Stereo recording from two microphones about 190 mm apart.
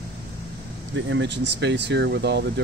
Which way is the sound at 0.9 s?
70° right (ahead or behind).